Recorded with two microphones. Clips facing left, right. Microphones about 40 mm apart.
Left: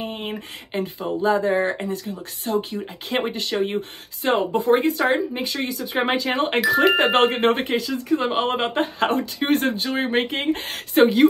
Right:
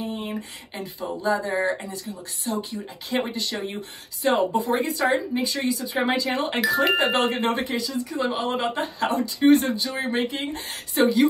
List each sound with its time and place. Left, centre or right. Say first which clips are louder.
0.0 s speech: left 1 dB; left
1.5 s speech: left 3 dB; left
1.8 s speech: left 6 dB; left